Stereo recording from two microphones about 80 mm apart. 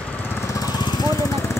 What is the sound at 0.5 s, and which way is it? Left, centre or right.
Lawn mower, left.